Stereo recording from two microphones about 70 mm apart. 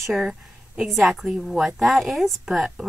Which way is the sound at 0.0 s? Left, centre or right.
Centre.